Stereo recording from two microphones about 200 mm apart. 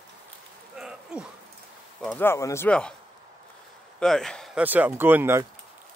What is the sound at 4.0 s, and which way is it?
Speech, centre (ahead or behind).